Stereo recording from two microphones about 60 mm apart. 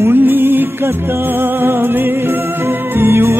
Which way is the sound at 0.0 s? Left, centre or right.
Right.